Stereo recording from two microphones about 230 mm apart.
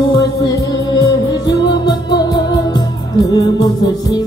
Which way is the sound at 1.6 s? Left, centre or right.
Centre.